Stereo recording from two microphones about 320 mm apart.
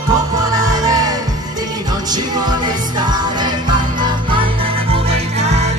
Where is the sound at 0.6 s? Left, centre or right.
Centre.